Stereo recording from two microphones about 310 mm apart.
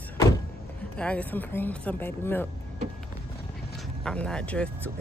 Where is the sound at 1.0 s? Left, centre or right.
Centre.